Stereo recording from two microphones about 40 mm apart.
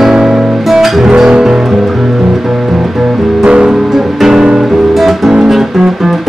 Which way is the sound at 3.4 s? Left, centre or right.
Right.